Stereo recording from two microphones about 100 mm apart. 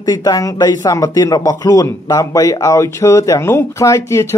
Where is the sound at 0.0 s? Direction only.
40° left (ahead or behind).